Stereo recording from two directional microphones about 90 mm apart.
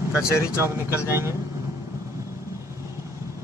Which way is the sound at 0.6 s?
30° right (ahead or behind).